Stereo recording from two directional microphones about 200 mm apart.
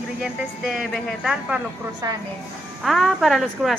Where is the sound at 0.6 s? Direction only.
Centre (ahead or behind).